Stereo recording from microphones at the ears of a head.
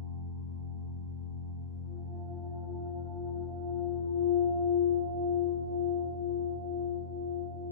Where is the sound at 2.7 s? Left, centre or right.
Left.